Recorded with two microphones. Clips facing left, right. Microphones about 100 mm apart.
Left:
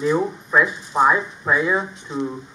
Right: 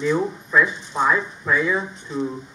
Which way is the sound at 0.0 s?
15° left (ahead or behind).